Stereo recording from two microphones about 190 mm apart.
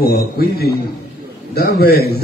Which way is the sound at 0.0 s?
55° left (ahead or behind).